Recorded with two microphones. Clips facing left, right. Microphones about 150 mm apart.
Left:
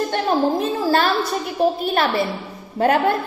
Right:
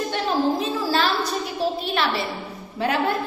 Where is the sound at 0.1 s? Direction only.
50° left (ahead or behind).